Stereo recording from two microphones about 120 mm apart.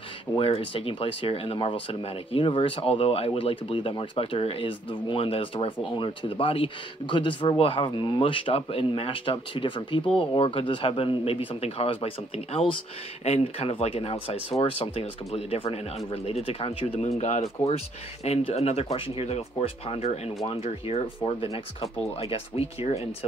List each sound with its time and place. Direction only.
0.4 s speech: 50° left (ahead or behind)
13.2 s speech: 60° left (ahead or behind)
17.2 s speech: 75° left (ahead or behind)